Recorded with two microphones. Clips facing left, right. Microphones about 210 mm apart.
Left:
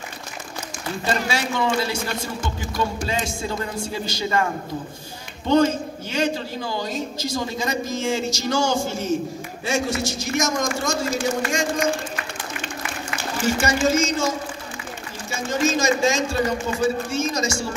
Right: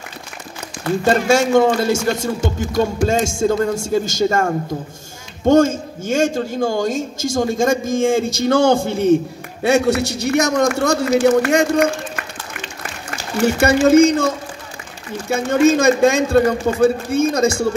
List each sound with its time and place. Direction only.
1.0 s a man's voice: 45° right (ahead or behind)
13.4 s a man's voice: 60° right (ahead or behind)